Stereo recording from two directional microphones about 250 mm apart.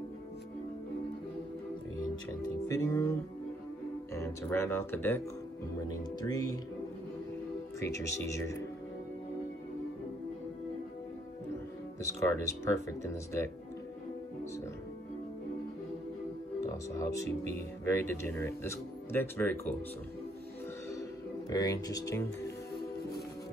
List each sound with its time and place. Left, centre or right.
2.7 s speech: centre
7.8 s speech: centre
12.2 s speech: centre
16.6 s speech: centre
21.5 s speech: centre